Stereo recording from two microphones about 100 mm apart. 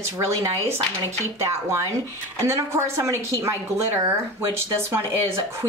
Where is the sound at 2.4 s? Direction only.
30° right (ahead or behind).